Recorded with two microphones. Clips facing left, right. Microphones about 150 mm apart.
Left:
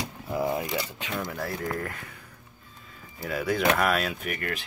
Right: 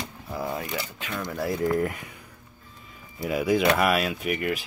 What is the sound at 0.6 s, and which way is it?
Speech, 25° left (ahead or behind).